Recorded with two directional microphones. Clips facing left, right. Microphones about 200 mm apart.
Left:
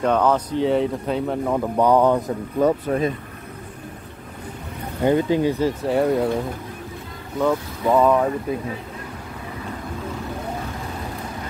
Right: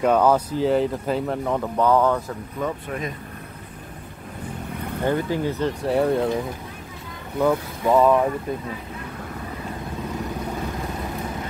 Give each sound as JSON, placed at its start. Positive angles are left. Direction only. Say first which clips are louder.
{"t": 0.0, "sound": "speech", "louder": "right 1 dB", "side_deg": -10}
{"t": 1.8, "sound": "speech", "louder": "left 3 dB", "side_deg": 15}
{"t": 2.6, "sound": "speech", "louder": "left 9 dB", "side_deg": 35}
{"t": 5.0, "sound": "speech", "louder": "left 5 dB", "side_deg": 15}
{"t": 7.3, "sound": "speech", "louder": "even", "side_deg": 0}